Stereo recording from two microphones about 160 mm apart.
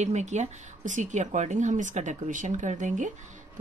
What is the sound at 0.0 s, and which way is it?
A woman's voice, 45° right (ahead or behind).